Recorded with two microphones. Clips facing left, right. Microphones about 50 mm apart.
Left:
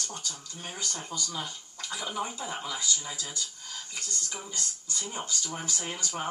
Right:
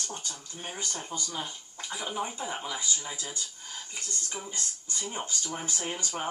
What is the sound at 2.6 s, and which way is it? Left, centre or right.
Speech, right.